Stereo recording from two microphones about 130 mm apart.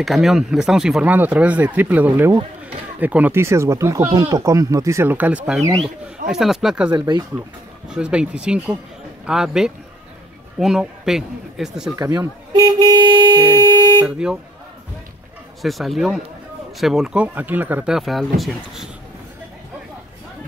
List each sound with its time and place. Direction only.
0.0 s a man's voice: centre (ahead or behind)
6.9 s speech: 30° right (ahead or behind)
7.9 s a man's voice: 10° right (ahead or behind)
11.9 s toot: 25° right (ahead or behind)
14.0 s a man's voice: 5° right (ahead or behind)
15.6 s a man's voice: centre (ahead or behind)
17.9 s a man's voice: centre (ahead or behind)